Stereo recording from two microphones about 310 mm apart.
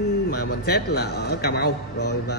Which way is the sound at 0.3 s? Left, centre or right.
Left.